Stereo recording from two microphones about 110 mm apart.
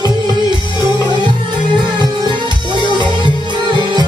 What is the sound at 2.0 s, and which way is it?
Music, 45° right (ahead or behind).